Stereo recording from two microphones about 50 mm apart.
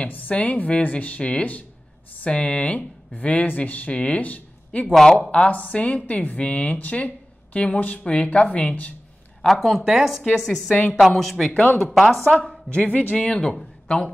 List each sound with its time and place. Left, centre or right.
0.0 s speech: left
4.9 s a woman's voice: centre
5.3 s speech: left
9.4 s a woman's voice: centre
12.4 s a woman's voice: centre
12.8 s a man's voice: left